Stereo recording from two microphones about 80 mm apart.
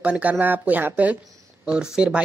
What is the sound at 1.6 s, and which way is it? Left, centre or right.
Speech, centre.